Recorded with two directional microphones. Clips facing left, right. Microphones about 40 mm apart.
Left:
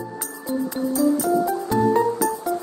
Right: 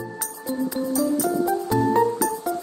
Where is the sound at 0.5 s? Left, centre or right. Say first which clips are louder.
Left 1 dB; centre.